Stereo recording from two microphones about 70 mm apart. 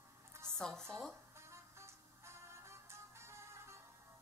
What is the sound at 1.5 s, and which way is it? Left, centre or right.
Music, right.